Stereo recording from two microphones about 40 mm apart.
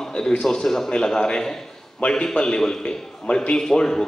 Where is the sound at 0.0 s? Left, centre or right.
Centre.